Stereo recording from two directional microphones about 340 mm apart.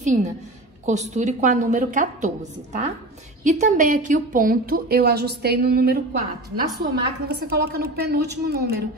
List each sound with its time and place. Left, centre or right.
0.0 s a woman's voice: right